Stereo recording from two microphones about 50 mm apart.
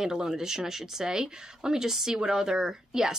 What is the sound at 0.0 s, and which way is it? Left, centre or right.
Speech, centre.